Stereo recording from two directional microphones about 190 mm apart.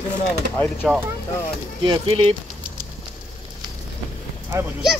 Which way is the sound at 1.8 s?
30° right (ahead or behind).